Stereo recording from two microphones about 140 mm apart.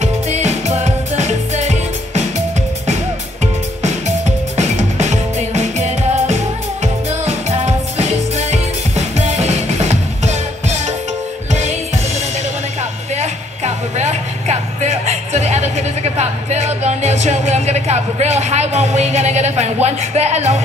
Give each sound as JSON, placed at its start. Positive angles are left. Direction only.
{"t": 0.0, "sound": "music", "side_deg": -50}
{"t": 4.6, "sound": "music", "side_deg": -55}
{"t": 13.1, "sound": "music", "side_deg": -55}